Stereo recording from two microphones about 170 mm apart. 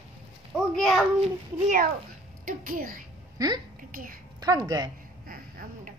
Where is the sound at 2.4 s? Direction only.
55° right (ahead or behind).